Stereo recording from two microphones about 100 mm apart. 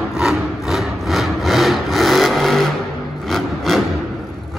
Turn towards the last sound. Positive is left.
turn(degrees=0)  # may be behind; listen again after turning